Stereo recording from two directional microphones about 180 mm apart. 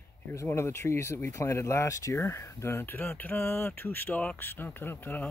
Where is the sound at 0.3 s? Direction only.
15° left (ahead or behind).